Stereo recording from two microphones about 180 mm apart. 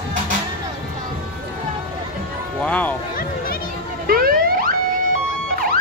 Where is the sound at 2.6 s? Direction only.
10° left (ahead or behind).